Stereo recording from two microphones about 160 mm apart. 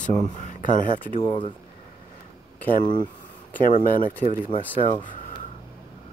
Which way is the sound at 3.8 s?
60° left (ahead or behind).